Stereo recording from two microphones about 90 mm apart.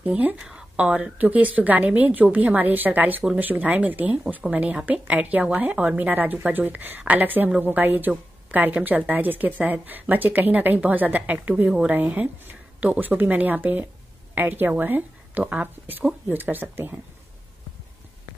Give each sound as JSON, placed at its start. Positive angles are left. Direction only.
{"t": 0.0, "sound": "a woman's voice", "side_deg": -15}